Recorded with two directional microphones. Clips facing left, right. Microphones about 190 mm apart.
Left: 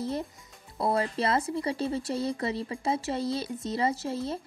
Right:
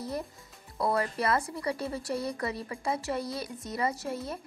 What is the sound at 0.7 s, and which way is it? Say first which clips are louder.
Speech: left 2 dB; 25° left (ahead or behind).